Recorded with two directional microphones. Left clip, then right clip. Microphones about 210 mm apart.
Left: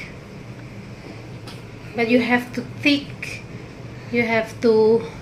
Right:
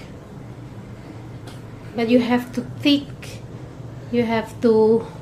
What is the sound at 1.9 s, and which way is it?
Speech, 10° right (ahead or behind).